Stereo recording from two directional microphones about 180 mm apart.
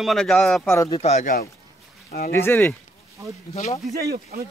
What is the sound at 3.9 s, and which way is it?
Speech, 60° right (ahead or behind).